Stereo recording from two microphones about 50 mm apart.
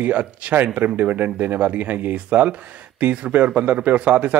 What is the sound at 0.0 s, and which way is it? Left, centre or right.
Speech, right.